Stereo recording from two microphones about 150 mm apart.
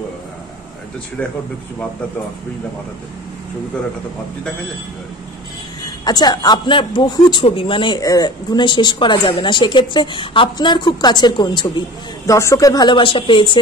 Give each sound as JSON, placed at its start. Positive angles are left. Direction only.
{"t": 6.0, "sound": "speech", "side_deg": 25}